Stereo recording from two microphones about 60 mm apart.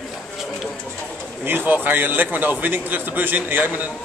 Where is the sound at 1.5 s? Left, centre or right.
Right.